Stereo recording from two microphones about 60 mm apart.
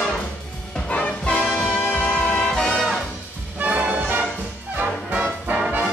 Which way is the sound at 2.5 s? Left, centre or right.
Centre.